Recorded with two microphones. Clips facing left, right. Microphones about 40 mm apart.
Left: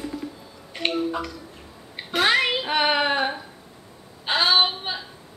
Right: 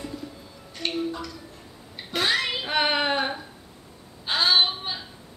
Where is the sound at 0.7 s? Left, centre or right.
Left.